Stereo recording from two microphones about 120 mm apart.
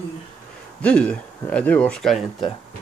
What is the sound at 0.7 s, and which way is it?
Speech, 10° left (ahead or behind).